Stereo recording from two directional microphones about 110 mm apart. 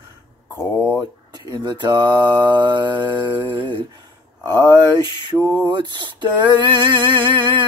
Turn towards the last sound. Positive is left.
turn(degrees=-45)  # may be behind; listen again after turning